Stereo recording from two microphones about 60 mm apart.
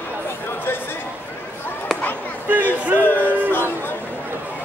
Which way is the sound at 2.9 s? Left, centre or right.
Left.